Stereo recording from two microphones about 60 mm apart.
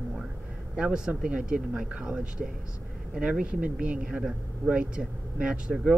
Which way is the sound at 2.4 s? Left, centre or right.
Centre.